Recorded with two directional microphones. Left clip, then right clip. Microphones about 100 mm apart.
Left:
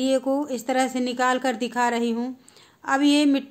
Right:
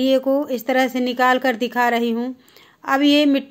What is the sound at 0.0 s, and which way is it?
A woman's voice, 20° right (ahead or behind).